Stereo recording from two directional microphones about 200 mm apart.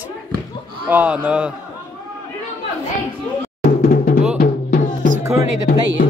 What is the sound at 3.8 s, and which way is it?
Music, 45° left (ahead or behind).